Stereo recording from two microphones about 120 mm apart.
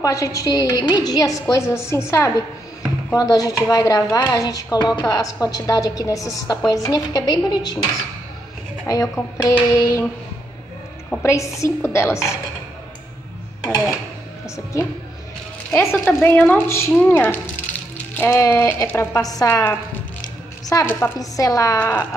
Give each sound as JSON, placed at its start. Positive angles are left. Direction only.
{"t": 0.0, "sound": "a woman's voice", "side_deg": 25}
{"t": 8.8, "sound": "speech", "side_deg": 25}
{"t": 11.2, "sound": "speech", "side_deg": 25}
{"t": 13.7, "sound": "a woman's voice", "side_deg": 30}
{"t": 15.7, "sound": "a woman's voice", "side_deg": 20}
{"t": 21.7, "sound": "a woman's voice", "side_deg": 15}